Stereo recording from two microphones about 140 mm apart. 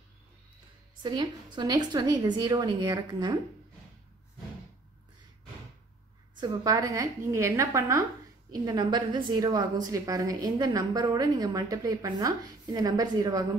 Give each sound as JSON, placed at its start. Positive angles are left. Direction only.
{"t": 1.0, "sound": "a woman's voice", "side_deg": -35}
{"t": 6.4, "sound": "a woman's voice", "side_deg": -30}